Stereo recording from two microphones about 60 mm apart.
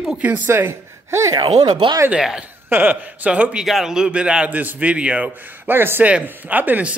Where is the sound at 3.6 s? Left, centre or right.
Centre.